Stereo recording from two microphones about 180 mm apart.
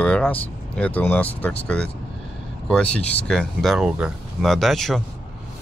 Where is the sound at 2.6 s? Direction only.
5° left (ahead or behind).